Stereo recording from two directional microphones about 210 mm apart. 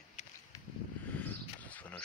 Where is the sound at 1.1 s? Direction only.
5° left (ahead or behind).